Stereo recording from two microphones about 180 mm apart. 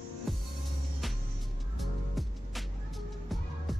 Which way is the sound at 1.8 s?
Centre (ahead or behind).